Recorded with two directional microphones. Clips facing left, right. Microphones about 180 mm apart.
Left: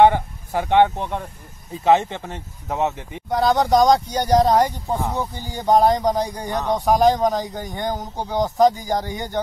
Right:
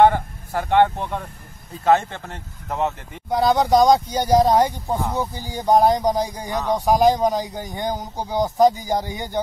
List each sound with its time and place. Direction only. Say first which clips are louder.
0.0 s speech: left 1 dB; 15° left (ahead or behind)
3.3 s a man's voice: even; 5° right (ahead or behind)
5.3 s speech: right 1 dB; 15° right (ahead or behind)
5.7 s a man's voice: even; 5° right (ahead or behind)